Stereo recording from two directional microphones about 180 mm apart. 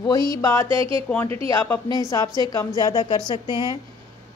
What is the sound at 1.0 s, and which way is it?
A woman's voice, 10° left (ahead or behind).